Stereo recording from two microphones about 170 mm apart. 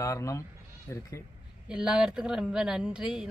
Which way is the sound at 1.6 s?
5° right (ahead or behind).